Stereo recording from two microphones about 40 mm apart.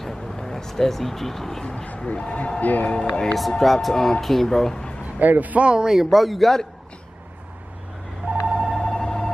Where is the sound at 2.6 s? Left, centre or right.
Left.